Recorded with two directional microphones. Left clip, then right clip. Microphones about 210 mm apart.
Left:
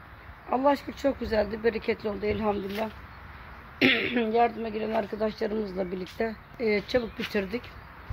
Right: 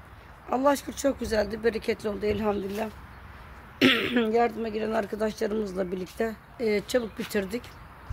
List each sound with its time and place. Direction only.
0.5 s speech: 10° right (ahead or behind)
3.8 s a sound: 15° right (ahead or behind)
4.4 s speech: 15° right (ahead or behind)